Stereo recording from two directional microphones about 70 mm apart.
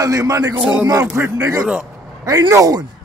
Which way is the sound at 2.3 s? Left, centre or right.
Right.